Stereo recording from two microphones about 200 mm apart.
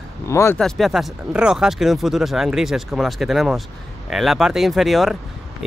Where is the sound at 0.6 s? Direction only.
Centre (ahead or behind).